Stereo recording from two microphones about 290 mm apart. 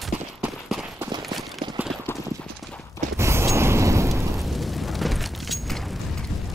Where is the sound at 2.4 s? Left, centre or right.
Centre.